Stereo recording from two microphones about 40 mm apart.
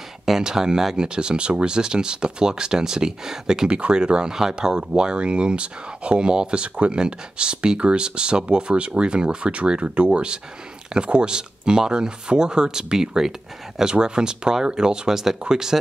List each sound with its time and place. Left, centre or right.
0.2 s speech: centre
3.6 s speech: right